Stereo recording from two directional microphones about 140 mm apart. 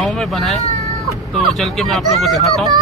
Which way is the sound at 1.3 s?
Centre (ahead or behind).